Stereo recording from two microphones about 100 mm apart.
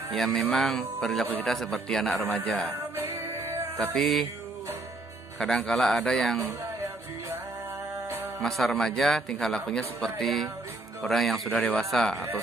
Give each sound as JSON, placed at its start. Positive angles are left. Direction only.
{"t": 0.1, "sound": "a man's voice", "side_deg": 0}
{"t": 2.7, "sound": "music", "side_deg": -25}
{"t": 3.9, "sound": "a man's voice", "side_deg": 5}
{"t": 5.4, "sound": "a man's voice", "side_deg": 5}
{"t": 6.4, "sound": "music", "side_deg": -20}
{"t": 8.4, "sound": "a man's voice", "side_deg": 0}
{"t": 11.5, "sound": "speech", "side_deg": 15}
{"t": 11.8, "sound": "a man's voice", "side_deg": 5}